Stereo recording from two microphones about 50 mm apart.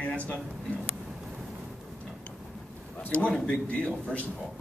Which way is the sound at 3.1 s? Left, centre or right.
Left.